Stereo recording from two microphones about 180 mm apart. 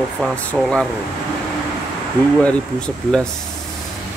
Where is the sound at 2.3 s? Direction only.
5° left (ahead or behind).